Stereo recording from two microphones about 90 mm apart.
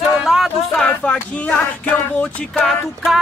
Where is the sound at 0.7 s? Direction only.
15° left (ahead or behind).